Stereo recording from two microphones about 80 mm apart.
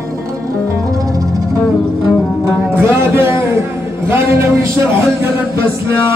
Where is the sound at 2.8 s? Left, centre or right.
Right.